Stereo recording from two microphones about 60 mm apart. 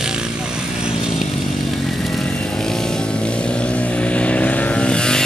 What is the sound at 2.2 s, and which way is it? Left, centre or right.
Vehicle, centre.